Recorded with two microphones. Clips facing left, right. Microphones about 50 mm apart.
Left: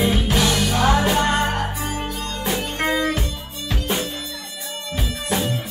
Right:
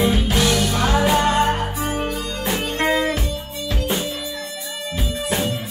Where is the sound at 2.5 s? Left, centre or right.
Centre.